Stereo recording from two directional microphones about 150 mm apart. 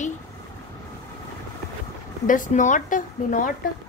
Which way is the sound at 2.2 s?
60° left (ahead or behind).